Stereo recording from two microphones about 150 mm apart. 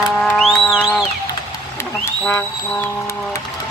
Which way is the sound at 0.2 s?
Centre (ahead or behind).